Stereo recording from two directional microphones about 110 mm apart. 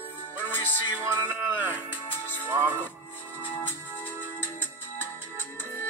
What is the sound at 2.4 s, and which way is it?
Speech, 15° right (ahead or behind).